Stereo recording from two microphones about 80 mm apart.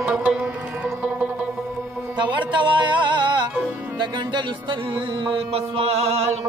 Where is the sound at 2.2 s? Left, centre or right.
Right.